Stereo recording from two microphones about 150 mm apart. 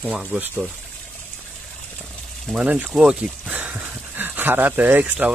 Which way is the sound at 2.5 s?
10° right (ahead or behind).